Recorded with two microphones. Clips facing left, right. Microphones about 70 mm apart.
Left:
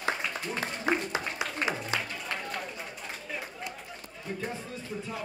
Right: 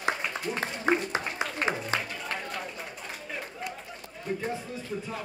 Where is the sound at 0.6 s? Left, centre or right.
Right.